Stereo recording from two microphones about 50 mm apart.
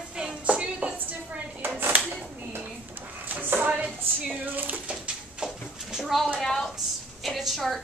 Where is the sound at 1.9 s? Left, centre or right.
Right.